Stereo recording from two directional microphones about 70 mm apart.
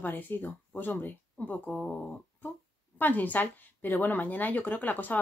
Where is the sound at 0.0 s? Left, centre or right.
Left.